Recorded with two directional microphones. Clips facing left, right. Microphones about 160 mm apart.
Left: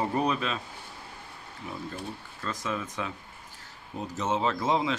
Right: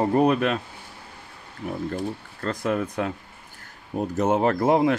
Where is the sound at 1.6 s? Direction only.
65° right (ahead or behind).